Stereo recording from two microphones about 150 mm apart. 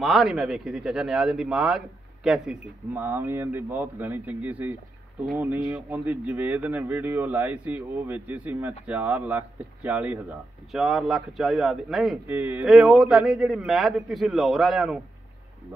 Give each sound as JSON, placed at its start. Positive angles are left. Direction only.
{"t": 0.0, "sound": "a man's voice", "side_deg": 0}
{"t": 12.3, "sound": "speech", "side_deg": -10}
{"t": 12.6, "sound": "a man's voice", "side_deg": 0}